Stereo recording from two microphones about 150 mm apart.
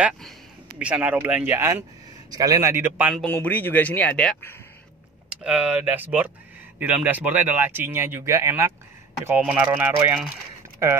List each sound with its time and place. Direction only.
0.7 s speech: 10° right (ahead or behind)
3.3 s speech: 10° left (ahead or behind)
5.3 s speech: 5° right (ahead or behind)